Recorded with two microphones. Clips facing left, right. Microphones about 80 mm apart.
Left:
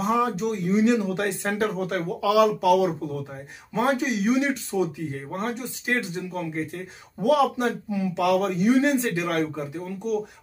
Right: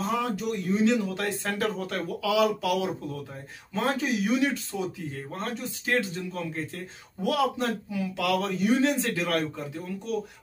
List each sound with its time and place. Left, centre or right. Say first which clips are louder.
0.0 s a man's voice: left 5 dB; left
3.7 s a man's voice: left 4 dB; centre